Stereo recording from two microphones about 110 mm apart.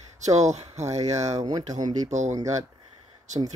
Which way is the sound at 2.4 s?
30° right (ahead or behind).